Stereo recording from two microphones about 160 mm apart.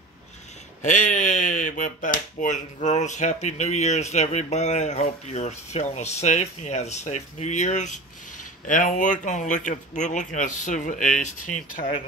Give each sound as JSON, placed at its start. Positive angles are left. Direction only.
{"t": 0.8, "sound": "speech", "side_deg": 55}